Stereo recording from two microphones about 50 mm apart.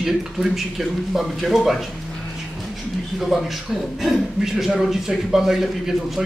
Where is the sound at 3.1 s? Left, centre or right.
Centre.